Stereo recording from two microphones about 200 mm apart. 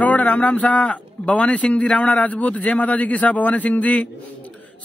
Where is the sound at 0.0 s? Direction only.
5° left (ahead or behind).